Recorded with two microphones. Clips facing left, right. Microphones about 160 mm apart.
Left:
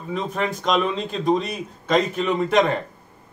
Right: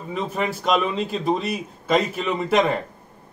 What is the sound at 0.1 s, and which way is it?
Speech, 5° right (ahead or behind).